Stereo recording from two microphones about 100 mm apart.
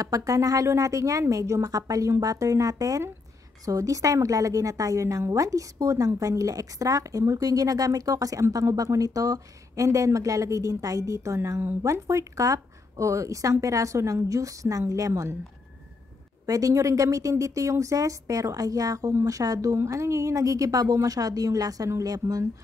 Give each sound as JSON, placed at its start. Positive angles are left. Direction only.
{"t": 0.0, "sound": "a woman's voice", "side_deg": -35}
{"t": 16.4, "sound": "a woman's voice", "side_deg": -35}